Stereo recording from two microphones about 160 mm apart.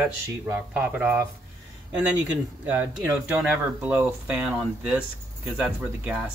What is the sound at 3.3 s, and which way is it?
Speech, 5° right (ahead or behind).